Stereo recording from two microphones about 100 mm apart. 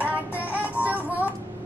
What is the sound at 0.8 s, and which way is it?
Child singing, 15° right (ahead or behind).